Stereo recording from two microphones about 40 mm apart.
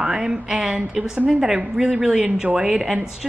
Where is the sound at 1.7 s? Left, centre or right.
Centre.